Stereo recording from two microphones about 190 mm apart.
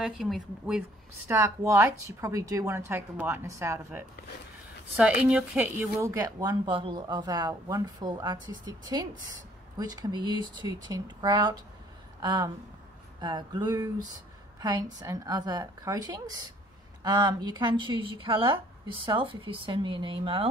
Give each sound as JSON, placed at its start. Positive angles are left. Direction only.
{"t": 0.0, "sound": "speech", "side_deg": 0}